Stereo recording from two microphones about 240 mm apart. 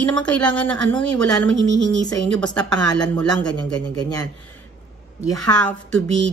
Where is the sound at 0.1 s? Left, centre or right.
Centre.